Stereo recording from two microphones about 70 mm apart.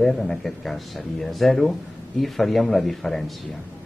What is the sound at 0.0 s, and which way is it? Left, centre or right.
Speech, centre.